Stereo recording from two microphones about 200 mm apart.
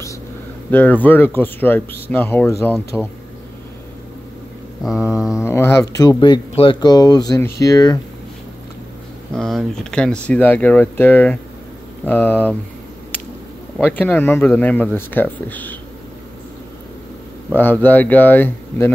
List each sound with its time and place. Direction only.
0.7 s speech: 10° left (ahead or behind)
4.8 s speech: 5° right (ahead or behind)
5.4 s speech: 10° left (ahead or behind)
9.3 s speech: centre (ahead or behind)
13.7 s speech: 5° left (ahead or behind)
17.6 s speech: 10° left (ahead or behind)